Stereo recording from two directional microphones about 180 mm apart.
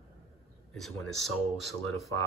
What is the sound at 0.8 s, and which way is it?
Speech, centre (ahead or behind).